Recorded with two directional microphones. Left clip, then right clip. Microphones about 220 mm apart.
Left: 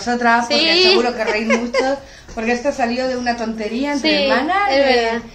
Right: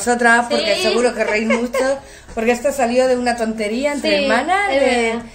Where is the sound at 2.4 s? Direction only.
50° right (ahead or behind).